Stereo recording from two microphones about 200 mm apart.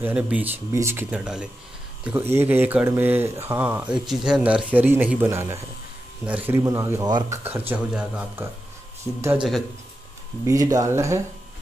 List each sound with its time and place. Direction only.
0.0 s speech: 5° right (ahead or behind)